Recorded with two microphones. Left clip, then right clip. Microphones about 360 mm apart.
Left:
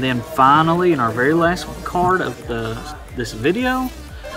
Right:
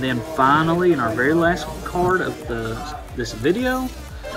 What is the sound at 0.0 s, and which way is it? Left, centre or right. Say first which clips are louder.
Speech: left 4 dB; left.